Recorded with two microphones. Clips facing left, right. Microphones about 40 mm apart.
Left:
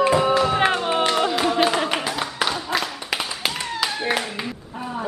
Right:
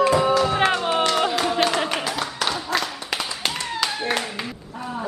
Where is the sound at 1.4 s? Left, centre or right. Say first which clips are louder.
Left 1 dB; centre.